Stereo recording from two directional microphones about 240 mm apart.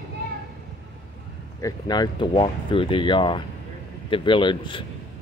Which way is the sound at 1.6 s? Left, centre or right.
Centre.